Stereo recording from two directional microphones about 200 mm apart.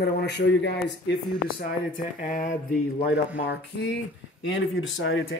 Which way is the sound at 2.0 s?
40° left (ahead or behind).